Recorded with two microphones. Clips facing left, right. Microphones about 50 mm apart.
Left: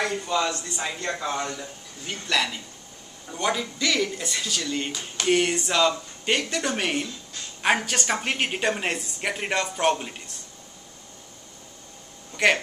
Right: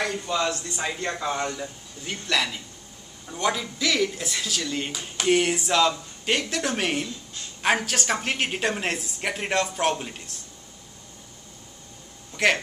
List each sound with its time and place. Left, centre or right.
0.0 s speech: centre
12.4 s speech: centre